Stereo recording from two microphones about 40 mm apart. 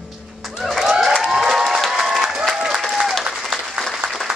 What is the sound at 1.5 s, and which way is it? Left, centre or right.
Applause, centre.